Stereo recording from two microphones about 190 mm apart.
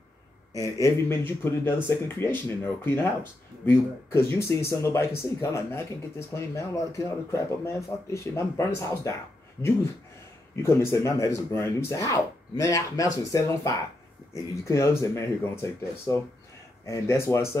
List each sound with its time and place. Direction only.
0.5 s speech: 15° left (ahead or behind)
10.6 s speech: 15° left (ahead or behind)